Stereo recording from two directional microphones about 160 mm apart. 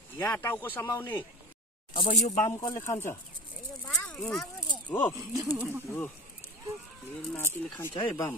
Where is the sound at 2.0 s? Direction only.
35° left (ahead or behind).